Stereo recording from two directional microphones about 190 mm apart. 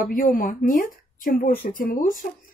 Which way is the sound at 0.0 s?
45° left (ahead or behind).